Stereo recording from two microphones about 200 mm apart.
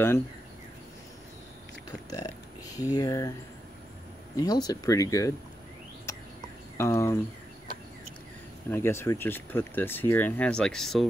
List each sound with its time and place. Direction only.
1.9 s speech: 20° left (ahead or behind)
4.4 s speech: 20° left (ahead or behind)
6.1 s a sound: 15° left (ahead or behind)
6.8 s speech: 15° left (ahead or behind)
8.6 s speech: 10° left (ahead or behind)